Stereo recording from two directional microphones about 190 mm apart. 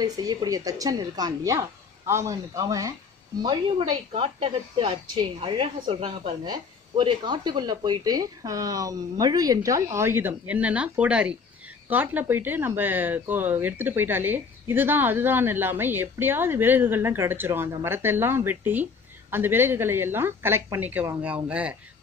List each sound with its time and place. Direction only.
0.0 s a woman's voice: 20° right (ahead or behind)
3.4 s a woman's voice: 30° right (ahead or behind); by 21.7 s 5° right (ahead or behind)